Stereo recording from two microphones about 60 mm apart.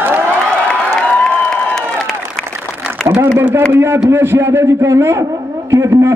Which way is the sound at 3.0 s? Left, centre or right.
Centre.